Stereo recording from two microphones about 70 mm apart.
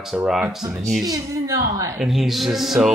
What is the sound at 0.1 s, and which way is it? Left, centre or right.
Speech, centre.